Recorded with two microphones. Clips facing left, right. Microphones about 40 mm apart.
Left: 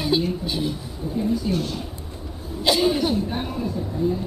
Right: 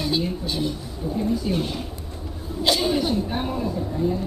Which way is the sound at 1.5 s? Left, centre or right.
Right.